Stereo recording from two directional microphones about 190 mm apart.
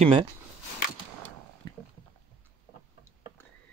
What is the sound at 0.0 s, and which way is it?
Speech, 30° right (ahead or behind).